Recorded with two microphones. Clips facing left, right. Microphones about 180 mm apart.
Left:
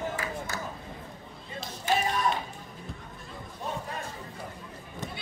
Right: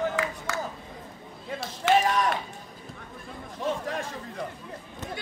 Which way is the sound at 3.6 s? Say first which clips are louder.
Right 6 dB; 90° right.